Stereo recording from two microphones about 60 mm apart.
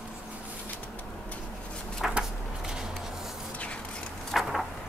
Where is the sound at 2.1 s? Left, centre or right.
Centre.